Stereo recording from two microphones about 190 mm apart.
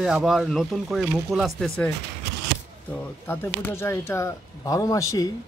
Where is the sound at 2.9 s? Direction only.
10° left (ahead or behind).